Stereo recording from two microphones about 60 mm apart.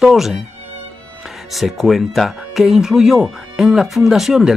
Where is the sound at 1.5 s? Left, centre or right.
Centre.